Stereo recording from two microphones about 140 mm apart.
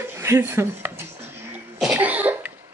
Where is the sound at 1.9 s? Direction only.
10° right (ahead or behind).